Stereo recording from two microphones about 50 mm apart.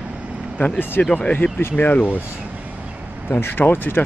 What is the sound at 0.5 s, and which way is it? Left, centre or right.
Speech, left.